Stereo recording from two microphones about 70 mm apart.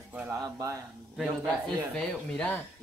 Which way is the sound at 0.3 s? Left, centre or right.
Right.